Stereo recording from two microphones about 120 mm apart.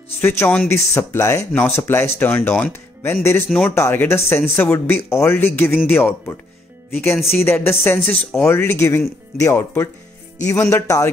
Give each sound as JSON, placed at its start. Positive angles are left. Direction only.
{"t": 0.2, "sound": "speech", "side_deg": 20}
{"t": 3.4, "sound": "speech", "side_deg": 5}
{"t": 3.7, "sound": "speech", "side_deg": 20}
{"t": 6.9, "sound": "speech", "side_deg": 15}